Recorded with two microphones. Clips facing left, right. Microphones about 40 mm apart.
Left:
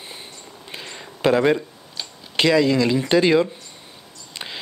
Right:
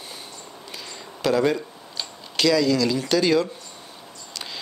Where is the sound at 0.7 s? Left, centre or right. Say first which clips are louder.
Left 3 dB; left.